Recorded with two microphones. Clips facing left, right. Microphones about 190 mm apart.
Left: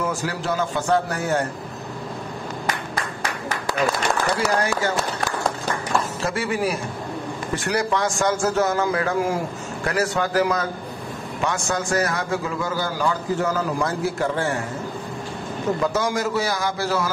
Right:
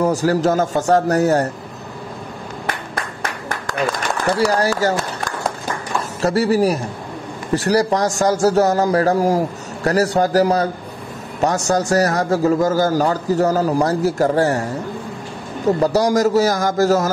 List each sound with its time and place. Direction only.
0.0 s a man's voice: 40° right (ahead or behind)
4.5 s a man's voice: 35° right (ahead or behind)
6.2 s a man's voice: 35° right (ahead or behind)
15.8 s a man's voice: 35° right (ahead or behind)